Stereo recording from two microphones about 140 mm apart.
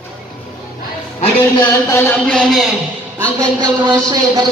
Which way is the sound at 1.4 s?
15° left (ahead or behind).